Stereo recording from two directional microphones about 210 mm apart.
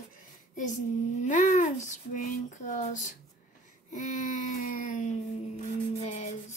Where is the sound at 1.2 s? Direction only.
35° left (ahead or behind).